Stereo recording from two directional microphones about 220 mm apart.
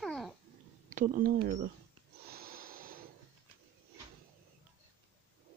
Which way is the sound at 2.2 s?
45° right (ahead or behind).